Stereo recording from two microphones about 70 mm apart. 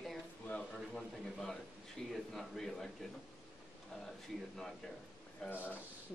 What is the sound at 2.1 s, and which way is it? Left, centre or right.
Speech, centre.